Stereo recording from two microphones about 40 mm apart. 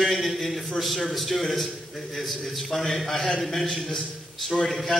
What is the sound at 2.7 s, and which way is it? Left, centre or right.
A man's voice, centre.